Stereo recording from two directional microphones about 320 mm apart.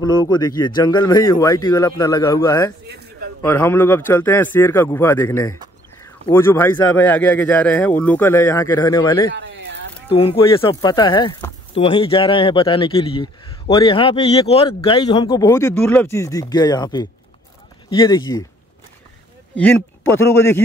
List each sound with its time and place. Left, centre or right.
0.0 s a man's voice: centre
9.3 s a sound: right
10.0 s speech: centre
19.5 s speech: centre